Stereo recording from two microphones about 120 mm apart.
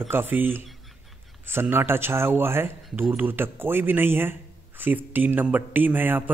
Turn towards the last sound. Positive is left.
turn(degrees=-15)  # may be behind; listen again after turning